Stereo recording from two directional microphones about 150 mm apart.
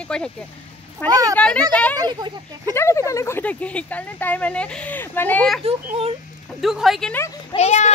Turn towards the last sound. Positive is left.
turn(degrees=45)  # may be behind; listen again after turning